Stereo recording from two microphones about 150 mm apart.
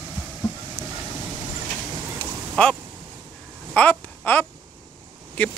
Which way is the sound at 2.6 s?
5° left (ahead or behind).